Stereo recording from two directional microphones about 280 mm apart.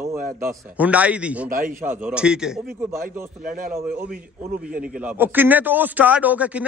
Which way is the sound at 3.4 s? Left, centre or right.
Right.